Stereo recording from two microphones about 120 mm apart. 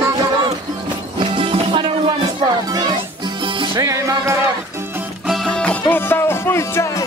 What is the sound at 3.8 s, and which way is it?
Music, 25° right (ahead or behind).